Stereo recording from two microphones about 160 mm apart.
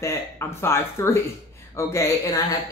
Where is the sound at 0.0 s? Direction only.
15° left (ahead or behind).